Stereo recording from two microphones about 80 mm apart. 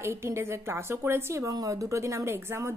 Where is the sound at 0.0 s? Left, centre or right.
Right.